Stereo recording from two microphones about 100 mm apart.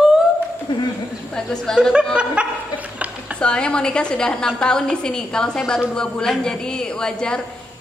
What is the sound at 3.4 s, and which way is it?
A woman's voice, 10° left (ahead or behind).